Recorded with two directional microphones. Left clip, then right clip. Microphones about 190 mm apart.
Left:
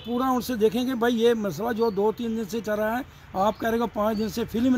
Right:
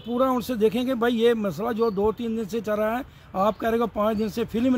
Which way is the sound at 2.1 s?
30° right (ahead or behind).